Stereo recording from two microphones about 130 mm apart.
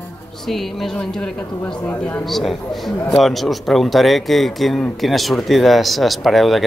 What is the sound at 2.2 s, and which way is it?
Speech, centre (ahead or behind).